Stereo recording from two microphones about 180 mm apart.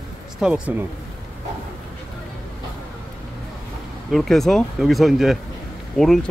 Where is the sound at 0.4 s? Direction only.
5° right (ahead or behind).